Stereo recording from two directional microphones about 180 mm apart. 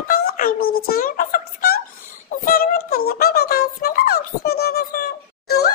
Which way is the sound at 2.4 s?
55° left (ahead or behind).